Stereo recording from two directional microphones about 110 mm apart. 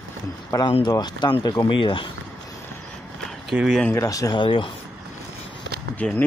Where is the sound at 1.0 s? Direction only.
40° left (ahead or behind).